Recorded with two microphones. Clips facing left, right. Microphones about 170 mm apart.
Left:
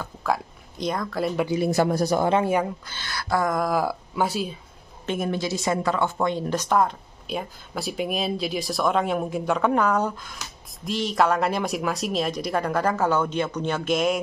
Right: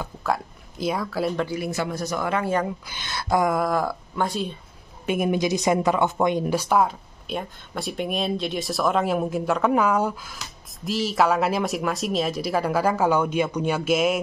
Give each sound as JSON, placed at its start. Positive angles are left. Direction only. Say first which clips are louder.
{"t": 0.0, "sound": "speech", "louder": "even", "side_deg": -5}
{"t": 1.7, "sound": "speech", "louder": "left 6 dB", "side_deg": 40}
{"t": 2.9, "sound": "speech", "louder": "right 2 dB", "side_deg": -20}
{"t": 3.5, "sound": "speech", "louder": "even", "side_deg": 0}
{"t": 5.0, "sound": "speech", "louder": "right 4 dB", "side_deg": -10}